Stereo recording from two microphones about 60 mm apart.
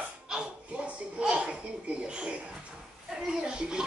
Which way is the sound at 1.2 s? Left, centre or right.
Centre.